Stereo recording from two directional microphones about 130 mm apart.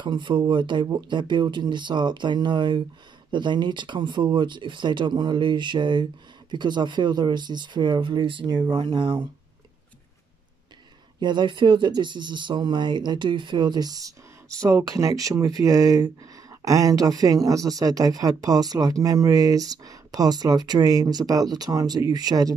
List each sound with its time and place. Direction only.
0.0 s speech: 35° right (ahead or behind)
11.1 s speech: 35° right (ahead or behind)